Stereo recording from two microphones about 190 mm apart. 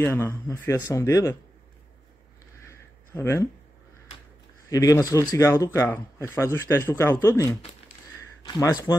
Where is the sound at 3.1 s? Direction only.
15° left (ahead or behind).